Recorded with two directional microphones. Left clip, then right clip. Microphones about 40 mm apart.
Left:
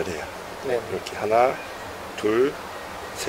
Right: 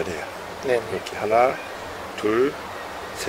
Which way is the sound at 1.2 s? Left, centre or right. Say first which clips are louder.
Right 1 dB; left.